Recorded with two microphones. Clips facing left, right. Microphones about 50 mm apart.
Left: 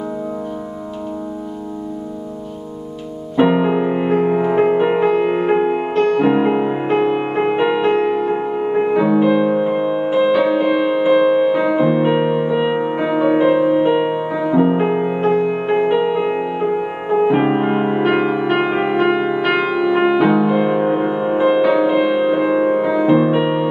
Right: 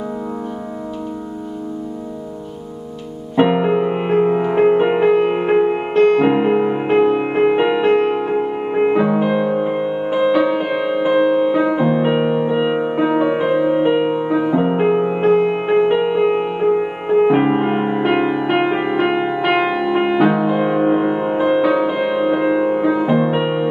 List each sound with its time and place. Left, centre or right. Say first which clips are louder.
3.3 s music: even; centre
3.9 s music: even; centre
4.3 s music: even; centre
4.6 s music: right 1 dB; centre
11.1 s music: even; centre
11.4 s music: left 1 dB; centre
14.3 s music: left 3 dB; centre